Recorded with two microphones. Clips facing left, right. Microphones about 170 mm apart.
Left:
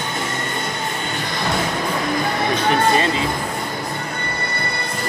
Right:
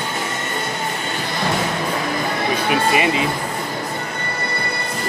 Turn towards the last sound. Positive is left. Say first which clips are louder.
# even
turn(degrees=-15)  # may be behind; listen again after turning